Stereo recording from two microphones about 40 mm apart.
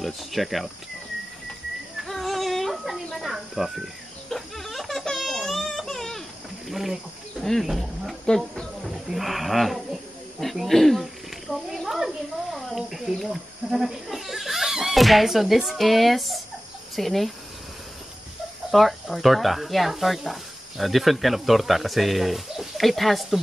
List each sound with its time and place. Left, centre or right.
0.0 s speech: centre
2.0 s music: centre
3.2 s speech: centre
4.3 s baby cry: centre
6.7 s speech: centre
8.3 s speech: centre
8.8 s a child's voice: centre
12.4 s a sound: centre
13.7 s speech: centre
18.7 s speech: centre